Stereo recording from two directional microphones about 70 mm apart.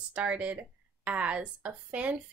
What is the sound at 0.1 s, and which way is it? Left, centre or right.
Speech, centre.